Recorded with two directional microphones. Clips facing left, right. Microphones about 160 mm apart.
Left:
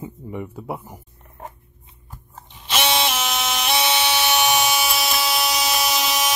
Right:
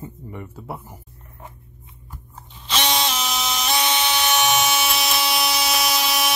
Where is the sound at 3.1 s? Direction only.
5° left (ahead or behind).